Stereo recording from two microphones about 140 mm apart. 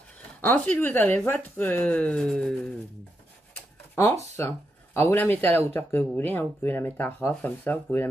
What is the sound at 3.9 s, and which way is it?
Speech, 20° left (ahead or behind).